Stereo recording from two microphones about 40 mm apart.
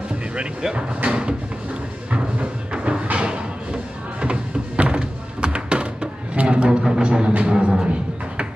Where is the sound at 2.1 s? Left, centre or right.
Right.